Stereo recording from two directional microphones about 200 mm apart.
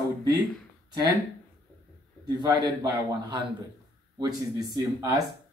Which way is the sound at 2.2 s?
20° right (ahead or behind).